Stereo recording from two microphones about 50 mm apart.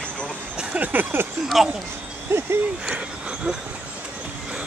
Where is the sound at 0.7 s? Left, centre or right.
Right.